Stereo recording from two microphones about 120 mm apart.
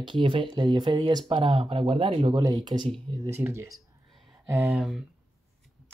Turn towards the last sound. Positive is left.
turn(degrees=-5)  # may be behind; listen again after turning